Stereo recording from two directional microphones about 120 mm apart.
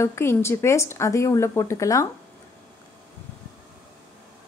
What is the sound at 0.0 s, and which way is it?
Speech, 20° left (ahead or behind).